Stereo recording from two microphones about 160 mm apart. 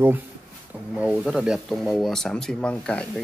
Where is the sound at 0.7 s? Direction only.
10° right (ahead or behind).